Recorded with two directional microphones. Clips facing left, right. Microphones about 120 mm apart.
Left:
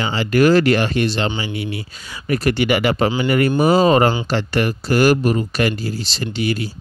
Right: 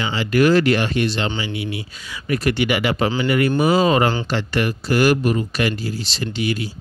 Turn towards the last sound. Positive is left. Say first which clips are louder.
# left 2 dB
turn(degrees=40)  # may be behind; listen again after turning